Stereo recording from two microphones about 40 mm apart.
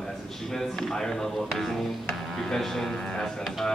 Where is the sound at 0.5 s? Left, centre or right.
Centre.